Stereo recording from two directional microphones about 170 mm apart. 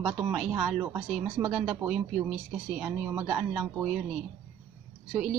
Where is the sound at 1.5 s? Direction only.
5° right (ahead or behind).